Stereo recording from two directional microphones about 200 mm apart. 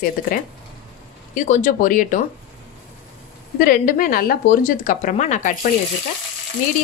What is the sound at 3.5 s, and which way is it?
A woman's voice, 45° left (ahead or behind).